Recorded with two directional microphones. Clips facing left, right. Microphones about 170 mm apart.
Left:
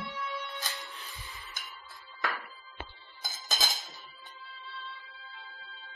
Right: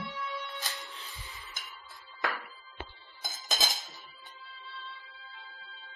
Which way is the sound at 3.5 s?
15° right (ahead or behind).